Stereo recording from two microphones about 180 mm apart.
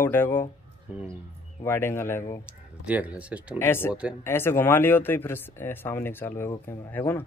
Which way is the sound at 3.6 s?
15° left (ahead or behind).